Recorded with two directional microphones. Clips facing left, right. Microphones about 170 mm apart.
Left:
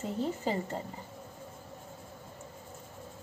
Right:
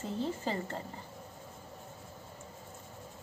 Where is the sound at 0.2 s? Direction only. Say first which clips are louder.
Left 3 dB; 15° left (ahead or behind).